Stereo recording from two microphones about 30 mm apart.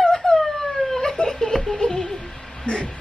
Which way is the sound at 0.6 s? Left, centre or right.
Centre.